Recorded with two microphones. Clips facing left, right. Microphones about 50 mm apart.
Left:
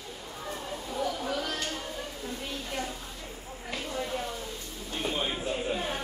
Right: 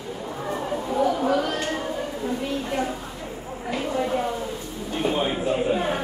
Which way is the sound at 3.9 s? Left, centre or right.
Right.